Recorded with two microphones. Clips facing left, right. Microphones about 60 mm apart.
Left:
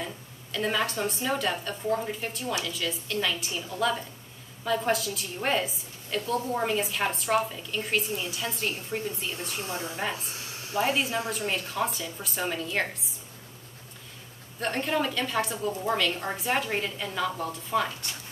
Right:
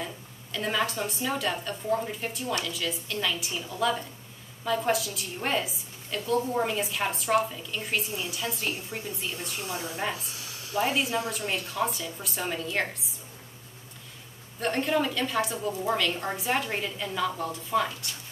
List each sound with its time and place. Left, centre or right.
0.0 s a sound: centre
1.2 s a woman's voice: centre
9.6 s a woman's voice: left
10.1 s a sound: left
10.8 s a woman's voice: centre
14.6 s a woman's voice: centre